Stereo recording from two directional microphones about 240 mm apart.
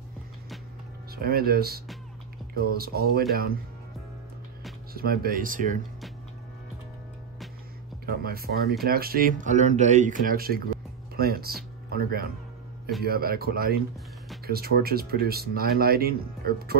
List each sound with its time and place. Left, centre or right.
1.1 s speech: right
4.9 s speech: right
8.0 s speech: right